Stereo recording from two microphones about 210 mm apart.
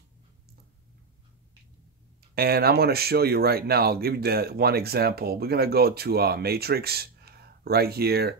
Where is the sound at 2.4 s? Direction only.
45° right (ahead or behind).